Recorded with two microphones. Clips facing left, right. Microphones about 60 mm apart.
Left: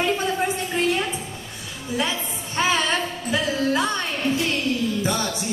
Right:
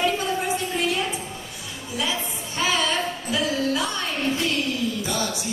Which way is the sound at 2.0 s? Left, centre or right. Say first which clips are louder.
Left 1 dB; left.